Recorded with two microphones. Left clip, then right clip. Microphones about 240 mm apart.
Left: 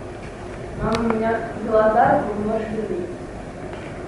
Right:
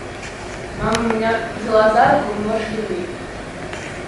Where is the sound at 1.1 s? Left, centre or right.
Centre.